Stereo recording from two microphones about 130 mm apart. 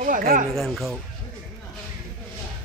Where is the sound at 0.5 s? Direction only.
Centre (ahead or behind).